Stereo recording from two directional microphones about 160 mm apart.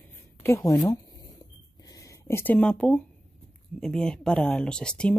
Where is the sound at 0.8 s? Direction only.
20° left (ahead or behind); by 3.0 s 5° left (ahead or behind).